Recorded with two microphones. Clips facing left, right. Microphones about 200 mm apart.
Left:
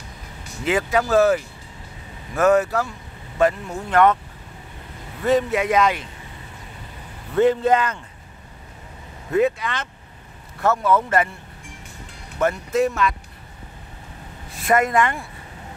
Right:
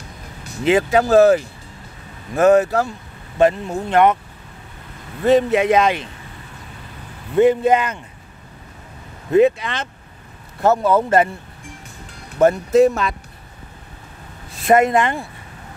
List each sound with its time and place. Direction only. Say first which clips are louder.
0.7 s speech: right 5 dB; 25° right (ahead or behind)
5.2 s speech: right 5 dB; 25° right (ahead or behind)
7.3 s speech: right 3 dB; 15° right (ahead or behind)
9.3 s speech: right 5 dB; 25° right (ahead or behind)
12.4 s speech: right 7 dB; 35° right (ahead or behind)
14.7 s speech: right 4 dB; 25° right (ahead or behind)